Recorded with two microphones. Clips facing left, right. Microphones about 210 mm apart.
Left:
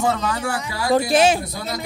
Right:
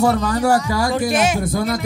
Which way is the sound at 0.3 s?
40° right (ahead or behind).